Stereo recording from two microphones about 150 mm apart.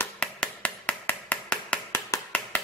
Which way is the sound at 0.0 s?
10° left (ahead or behind).